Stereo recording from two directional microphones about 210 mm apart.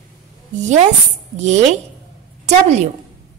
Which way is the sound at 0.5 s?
35° right (ahead or behind).